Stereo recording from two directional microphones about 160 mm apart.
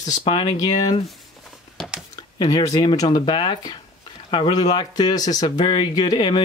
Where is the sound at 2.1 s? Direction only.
25° left (ahead or behind).